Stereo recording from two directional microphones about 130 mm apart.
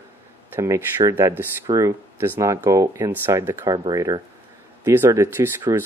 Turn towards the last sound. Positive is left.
turn(degrees=-20)  # may be behind; listen again after turning